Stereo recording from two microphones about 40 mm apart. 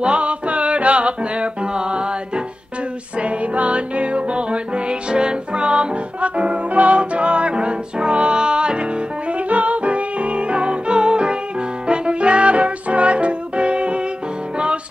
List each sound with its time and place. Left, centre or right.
0.0 s music: right
3.2 s music: right
9.3 s music: right